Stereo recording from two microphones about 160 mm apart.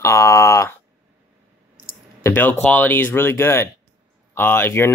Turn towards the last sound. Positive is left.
turn(degrees=15)  # may be behind; listen again after turning